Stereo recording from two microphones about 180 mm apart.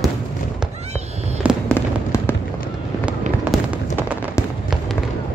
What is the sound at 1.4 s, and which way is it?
Fireworks, 10° right (ahead or behind).